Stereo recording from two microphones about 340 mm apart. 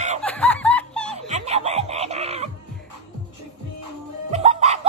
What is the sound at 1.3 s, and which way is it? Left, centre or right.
Music, centre.